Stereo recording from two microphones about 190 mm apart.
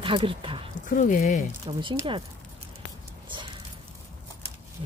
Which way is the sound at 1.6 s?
25° right (ahead or behind).